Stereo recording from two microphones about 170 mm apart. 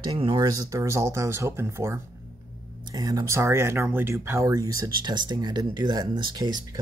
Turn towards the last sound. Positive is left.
turn(degrees=-25)  # may be behind; listen again after turning